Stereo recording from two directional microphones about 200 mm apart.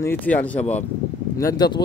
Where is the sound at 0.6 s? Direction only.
35° left (ahead or behind).